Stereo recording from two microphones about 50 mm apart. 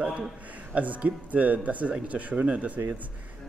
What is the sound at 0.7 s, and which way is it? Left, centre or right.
Speech, right.